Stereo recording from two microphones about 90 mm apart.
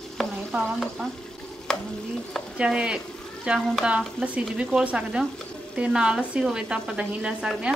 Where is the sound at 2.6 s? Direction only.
10° right (ahead or behind).